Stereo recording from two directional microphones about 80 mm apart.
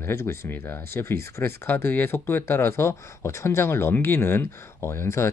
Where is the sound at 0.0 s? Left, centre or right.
Left.